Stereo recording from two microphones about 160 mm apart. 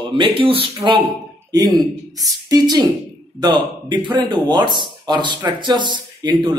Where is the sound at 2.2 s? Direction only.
25° right (ahead or behind).